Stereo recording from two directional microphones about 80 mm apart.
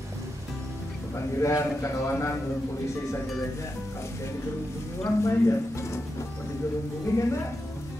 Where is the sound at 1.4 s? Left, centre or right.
Left.